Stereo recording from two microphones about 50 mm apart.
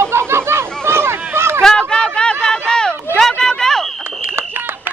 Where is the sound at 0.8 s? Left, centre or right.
Right.